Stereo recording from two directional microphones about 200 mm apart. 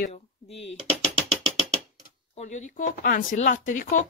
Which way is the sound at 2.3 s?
35° left (ahead or behind).